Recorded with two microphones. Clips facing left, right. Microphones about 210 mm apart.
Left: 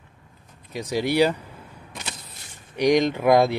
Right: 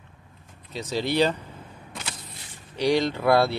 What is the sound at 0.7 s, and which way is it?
Speech, 15° left (ahead or behind).